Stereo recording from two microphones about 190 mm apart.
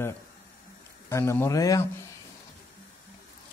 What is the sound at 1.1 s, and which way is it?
Speech, 10° left (ahead or behind).